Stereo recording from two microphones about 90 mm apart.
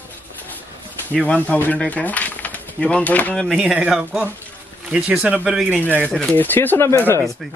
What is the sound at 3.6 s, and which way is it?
Speech, 15° right (ahead or behind).